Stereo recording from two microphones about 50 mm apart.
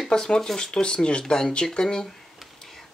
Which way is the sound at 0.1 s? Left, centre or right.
Centre.